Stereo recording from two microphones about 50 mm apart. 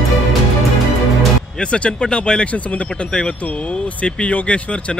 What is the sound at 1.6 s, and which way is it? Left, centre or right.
Speech, left.